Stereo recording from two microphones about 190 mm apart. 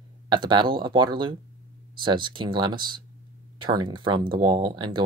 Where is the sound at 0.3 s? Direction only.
25° right (ahead or behind).